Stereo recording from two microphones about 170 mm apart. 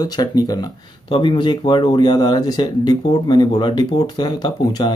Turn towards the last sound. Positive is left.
turn(degrees=25)  # may be behind; listen again after turning